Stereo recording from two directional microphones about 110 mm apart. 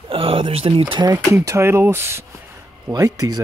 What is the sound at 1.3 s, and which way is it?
Speech, 25° right (ahead or behind).